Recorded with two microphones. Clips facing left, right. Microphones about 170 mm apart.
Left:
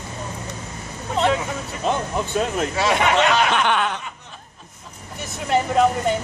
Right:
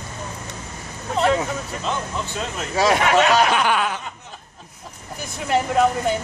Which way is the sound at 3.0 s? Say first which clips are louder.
Even; 5° right (ahead or behind).